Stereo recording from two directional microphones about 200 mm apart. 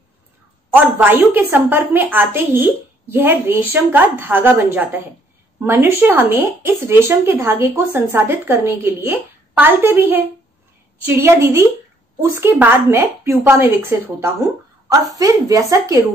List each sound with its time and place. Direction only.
0.7 s speech: 10° right (ahead or behind)